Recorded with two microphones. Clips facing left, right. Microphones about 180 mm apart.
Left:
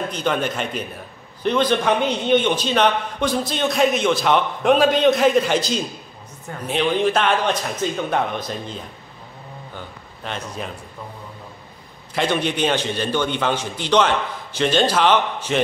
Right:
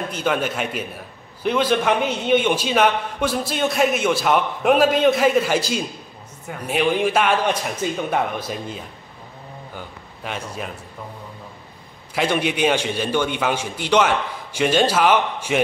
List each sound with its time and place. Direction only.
0.1 s a man's voice: 5° right (ahead or behind)
12.1 s a man's voice: 10° right (ahead or behind)